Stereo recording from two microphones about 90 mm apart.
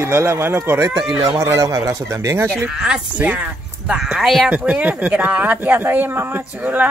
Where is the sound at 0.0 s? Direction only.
30° right (ahead or behind).